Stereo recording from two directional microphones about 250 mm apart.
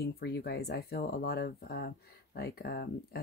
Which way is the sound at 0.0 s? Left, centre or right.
Left.